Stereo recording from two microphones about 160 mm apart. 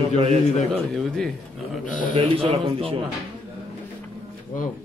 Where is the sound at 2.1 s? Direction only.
30° right (ahead or behind).